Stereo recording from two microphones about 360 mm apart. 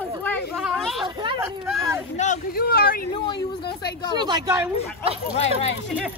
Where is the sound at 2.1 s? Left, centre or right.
Left.